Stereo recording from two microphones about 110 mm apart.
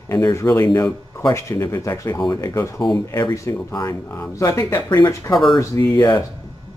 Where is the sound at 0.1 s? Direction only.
25° left (ahead or behind).